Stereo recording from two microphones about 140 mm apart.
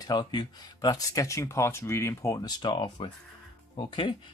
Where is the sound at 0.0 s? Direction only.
30° left (ahead or behind).